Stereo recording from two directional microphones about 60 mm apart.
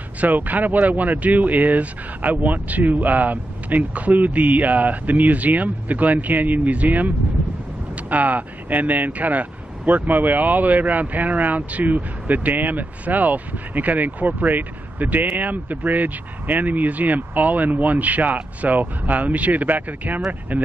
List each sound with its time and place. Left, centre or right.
0.2 s speech: right
8.1 s speech: right